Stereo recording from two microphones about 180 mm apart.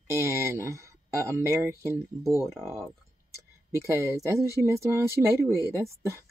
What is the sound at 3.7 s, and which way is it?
Speech, 15° right (ahead or behind).